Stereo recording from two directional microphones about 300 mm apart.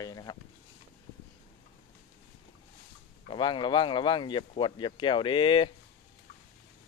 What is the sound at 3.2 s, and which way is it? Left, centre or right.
Speech, centre.